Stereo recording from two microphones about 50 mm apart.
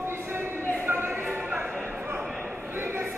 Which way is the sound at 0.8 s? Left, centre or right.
Right.